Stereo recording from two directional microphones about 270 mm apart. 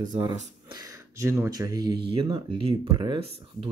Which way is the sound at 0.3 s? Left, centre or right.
Centre.